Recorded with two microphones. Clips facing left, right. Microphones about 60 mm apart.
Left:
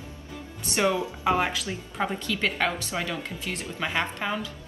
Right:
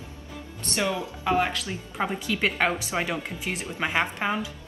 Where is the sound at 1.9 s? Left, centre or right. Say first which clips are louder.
Right 1 dB; centre.